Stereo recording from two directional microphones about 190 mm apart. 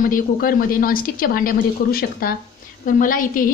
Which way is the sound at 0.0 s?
50° left (ahead or behind).